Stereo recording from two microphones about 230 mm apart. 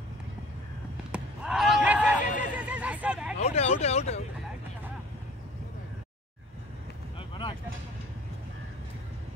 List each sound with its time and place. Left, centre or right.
1.1 s a sound: centre
2.5 s hubbub: centre
3.3 s vehicle: left
7.2 s vehicle: left